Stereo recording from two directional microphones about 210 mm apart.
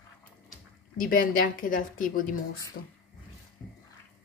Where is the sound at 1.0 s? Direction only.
40° left (ahead or behind).